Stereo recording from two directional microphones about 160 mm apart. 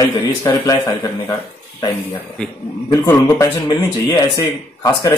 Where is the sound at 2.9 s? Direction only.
20° left (ahead or behind).